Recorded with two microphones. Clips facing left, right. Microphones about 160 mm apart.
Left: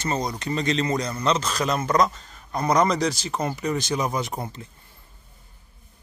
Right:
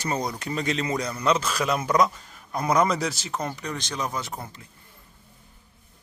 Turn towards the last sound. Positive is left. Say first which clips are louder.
# left 6 dB
turn(degrees=20)  # may be behind; listen again after turning